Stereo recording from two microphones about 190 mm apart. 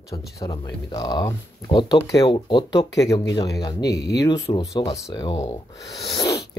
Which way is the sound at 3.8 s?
60° left (ahead or behind).